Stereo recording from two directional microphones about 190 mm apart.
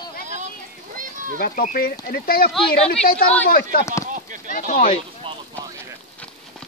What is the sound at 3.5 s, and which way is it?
Speech, 55° left (ahead or behind).